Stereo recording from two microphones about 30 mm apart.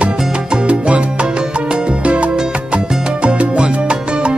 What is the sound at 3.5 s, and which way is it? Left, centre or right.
Salsa music, right.